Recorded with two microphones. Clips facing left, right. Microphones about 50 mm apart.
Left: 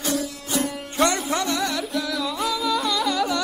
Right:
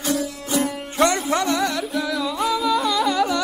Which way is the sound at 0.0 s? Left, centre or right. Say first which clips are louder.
Right 2 dB; centre.